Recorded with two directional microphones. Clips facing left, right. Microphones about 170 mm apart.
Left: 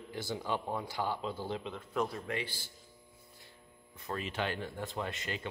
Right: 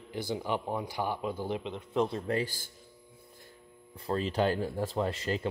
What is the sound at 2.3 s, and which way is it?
Speech, 45° right (ahead or behind).